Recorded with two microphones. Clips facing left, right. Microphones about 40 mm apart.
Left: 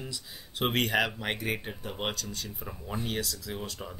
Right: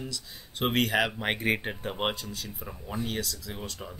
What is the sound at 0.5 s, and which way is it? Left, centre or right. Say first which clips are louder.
Speech: right 1 dB; centre.